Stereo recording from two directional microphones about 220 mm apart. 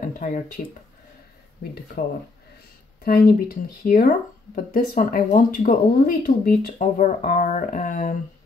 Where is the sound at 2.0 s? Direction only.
45° left (ahead or behind).